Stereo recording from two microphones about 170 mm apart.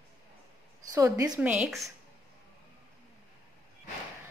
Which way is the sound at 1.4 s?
10° right (ahead or behind).